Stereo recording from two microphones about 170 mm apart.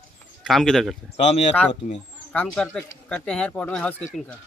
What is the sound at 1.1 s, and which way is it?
Speech, 35° left (ahead or behind).